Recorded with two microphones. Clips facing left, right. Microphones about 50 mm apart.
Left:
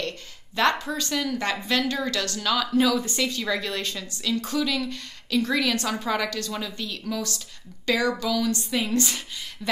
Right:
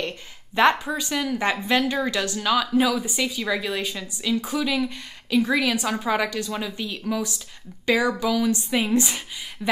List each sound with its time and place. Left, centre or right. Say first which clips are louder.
0.6 s a woman's voice: right 4 dB; centre